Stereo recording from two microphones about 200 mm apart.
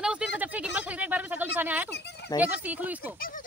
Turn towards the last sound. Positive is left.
turn(degrees=-10)  # may be behind; listen again after turning